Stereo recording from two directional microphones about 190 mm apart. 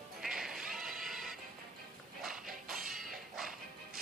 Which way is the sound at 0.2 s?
Centre (ahead or behind).